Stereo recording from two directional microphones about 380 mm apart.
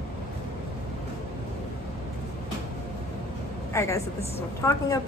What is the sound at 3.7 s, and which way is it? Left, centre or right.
A woman's voice, centre.